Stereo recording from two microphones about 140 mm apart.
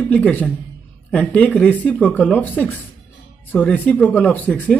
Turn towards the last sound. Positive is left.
turn(degrees=10)  # may be behind; listen again after turning